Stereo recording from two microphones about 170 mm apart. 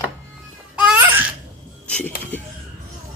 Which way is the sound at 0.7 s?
10° right (ahead or behind).